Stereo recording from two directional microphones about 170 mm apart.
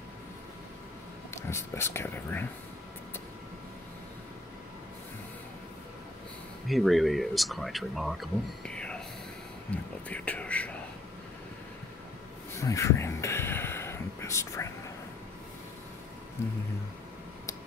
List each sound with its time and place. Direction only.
1.3 s speech: 15° left (ahead or behind)
6.7 s speech: centre (ahead or behind)
12.5 s a sound: 20° left (ahead or behind)